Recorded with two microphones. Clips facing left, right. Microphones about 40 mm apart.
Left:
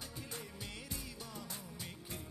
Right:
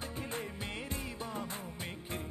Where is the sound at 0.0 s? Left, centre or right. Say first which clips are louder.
Right 8 dB; right.